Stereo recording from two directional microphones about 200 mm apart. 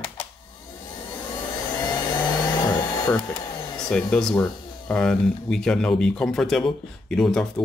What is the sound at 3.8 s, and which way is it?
Speech, 5° left (ahead or behind).